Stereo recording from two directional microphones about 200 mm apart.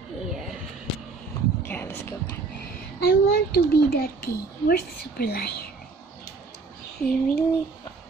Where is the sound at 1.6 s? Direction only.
10° left (ahead or behind).